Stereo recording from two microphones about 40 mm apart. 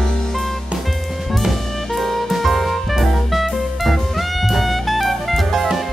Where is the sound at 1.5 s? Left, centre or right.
Centre.